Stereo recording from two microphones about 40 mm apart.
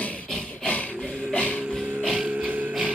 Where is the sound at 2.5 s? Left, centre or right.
Right.